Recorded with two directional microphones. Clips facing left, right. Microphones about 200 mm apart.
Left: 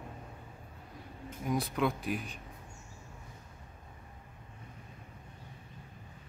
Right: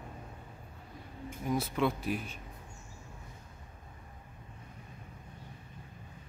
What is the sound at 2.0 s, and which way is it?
Speech, 45° right (ahead or behind).